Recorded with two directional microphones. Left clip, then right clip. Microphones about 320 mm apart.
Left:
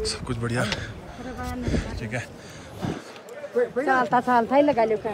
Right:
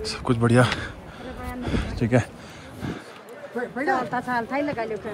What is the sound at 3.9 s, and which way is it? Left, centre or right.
Speech, left.